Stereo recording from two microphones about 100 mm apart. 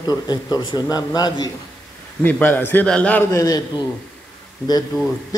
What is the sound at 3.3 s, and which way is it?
Speech, 35° left (ahead or behind).